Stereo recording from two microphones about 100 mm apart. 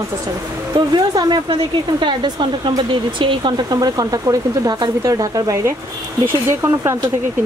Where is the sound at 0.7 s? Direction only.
45° right (ahead or behind).